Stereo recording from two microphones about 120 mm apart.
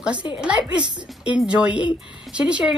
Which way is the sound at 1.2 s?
10° right (ahead or behind).